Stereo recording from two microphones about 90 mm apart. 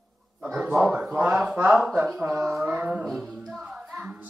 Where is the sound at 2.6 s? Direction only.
15° right (ahead or behind).